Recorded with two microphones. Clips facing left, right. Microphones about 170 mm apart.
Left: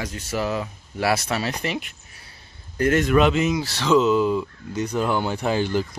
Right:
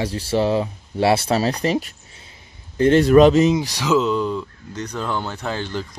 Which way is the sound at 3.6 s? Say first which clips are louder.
Left 1 dB; 10° right (ahead or behind).